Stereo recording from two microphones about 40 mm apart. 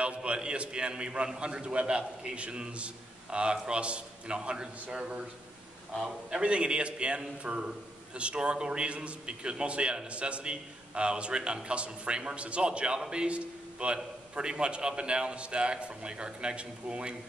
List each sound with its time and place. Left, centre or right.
0.0 s a man's voice: right
6.0 s a man's voice: right